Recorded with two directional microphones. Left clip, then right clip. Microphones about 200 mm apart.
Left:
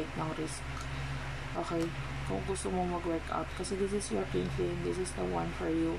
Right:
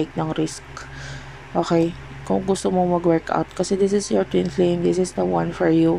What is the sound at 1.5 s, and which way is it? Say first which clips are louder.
Speech: right 16 dB; 35° right (ahead or behind).